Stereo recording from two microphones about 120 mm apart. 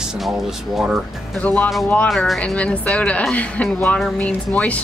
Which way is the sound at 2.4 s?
10° left (ahead or behind).